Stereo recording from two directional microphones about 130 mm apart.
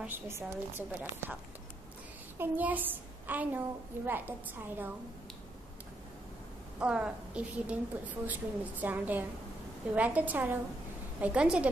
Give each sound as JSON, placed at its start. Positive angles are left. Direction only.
{"t": 0.0, "sound": "a woman's voice", "side_deg": -20}
{"t": 2.3, "sound": "a woman's voice", "side_deg": -15}
{"t": 6.8, "sound": "a woman's voice", "side_deg": -10}